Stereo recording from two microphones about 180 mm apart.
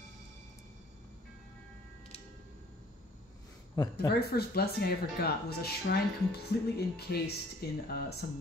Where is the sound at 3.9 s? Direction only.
60° left (ahead or behind).